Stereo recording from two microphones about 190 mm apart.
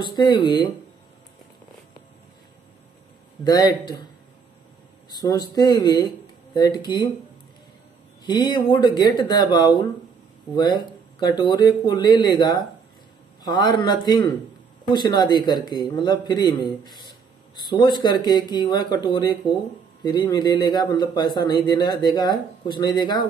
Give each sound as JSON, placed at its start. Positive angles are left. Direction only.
{"t": 0.0, "sound": "speech", "side_deg": 25}
{"t": 3.4, "sound": "speech", "side_deg": 20}
{"t": 5.1, "sound": "speech", "side_deg": 20}
{"t": 8.3, "sound": "speech", "side_deg": 20}